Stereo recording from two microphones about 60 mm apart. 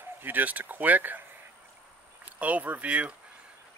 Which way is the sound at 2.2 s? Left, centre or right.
Right.